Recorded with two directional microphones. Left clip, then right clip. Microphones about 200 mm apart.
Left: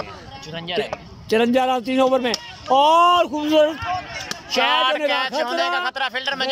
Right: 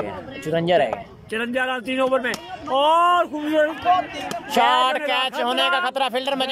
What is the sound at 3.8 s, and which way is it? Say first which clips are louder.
Speech: right 7 dB; 60° right (ahead or behind).